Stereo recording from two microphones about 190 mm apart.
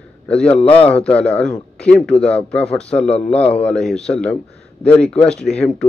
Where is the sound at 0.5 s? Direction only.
30° left (ahead or behind).